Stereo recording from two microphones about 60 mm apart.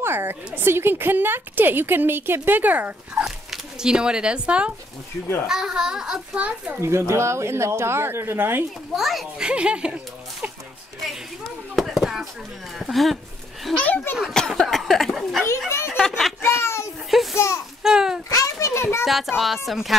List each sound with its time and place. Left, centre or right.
0.0 s a woman's voice: right
3.2 s a child's voice: centre
6.4 s speech: right
6.8 s speech: right
8.9 s speech: centre
9.4 s a child's voice: centre
11.7 s speech: centre
13.7 s speech: left
14.2 s speech: centre
16.0 s a sound: centre
16.3 s a sound: left
17.1 s a child's voice: centre
18.3 s a child's voice: left
19.0 s speech: centre